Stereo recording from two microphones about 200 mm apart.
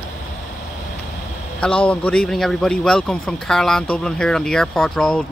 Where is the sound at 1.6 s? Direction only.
5° left (ahead or behind).